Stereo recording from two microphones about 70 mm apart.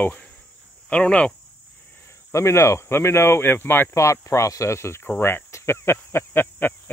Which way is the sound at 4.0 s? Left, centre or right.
Left.